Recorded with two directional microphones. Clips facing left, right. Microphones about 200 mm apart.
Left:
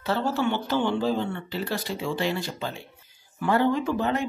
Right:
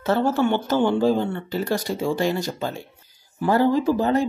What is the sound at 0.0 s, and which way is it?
A woman's voice, 50° right (ahead or behind).